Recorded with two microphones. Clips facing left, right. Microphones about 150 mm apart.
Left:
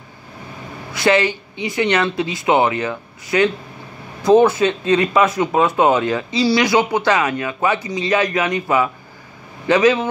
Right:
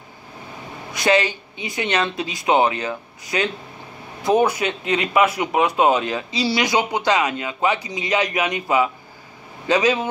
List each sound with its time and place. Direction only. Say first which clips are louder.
0.9 s speech: left 3 dB; 15° right (ahead or behind)